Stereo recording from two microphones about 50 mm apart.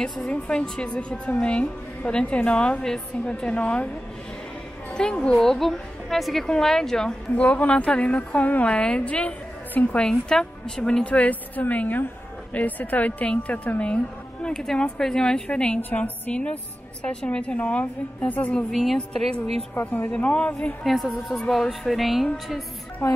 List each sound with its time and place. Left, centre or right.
0.3 s a woman's voice: left
4.9 s a woman's voice: centre
5.3 s a woman's voice: centre
7.3 s a woman's voice: left
8.6 s a woman's voice: centre
9.0 s a woman's voice: left; by 11.1 s centre
11.1 s a woman's voice: left
14.5 s a woman's voice: centre
15.8 s a woman's voice: left
18.7 s a woman's voice: centre
19.7 s a woman's voice: left
20.1 s a woman's voice: left
20.8 s a woman's voice: centre
23.0 s a woman's voice: left